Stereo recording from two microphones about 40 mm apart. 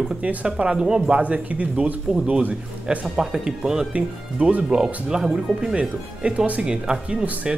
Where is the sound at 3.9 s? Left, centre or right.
Right.